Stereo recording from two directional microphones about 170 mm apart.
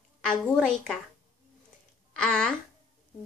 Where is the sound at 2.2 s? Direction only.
5° left (ahead or behind).